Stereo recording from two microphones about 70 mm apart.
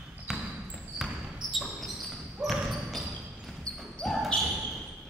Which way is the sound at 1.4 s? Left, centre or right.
Left.